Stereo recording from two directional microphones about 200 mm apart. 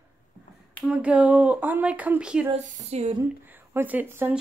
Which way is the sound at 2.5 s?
35° right (ahead or behind).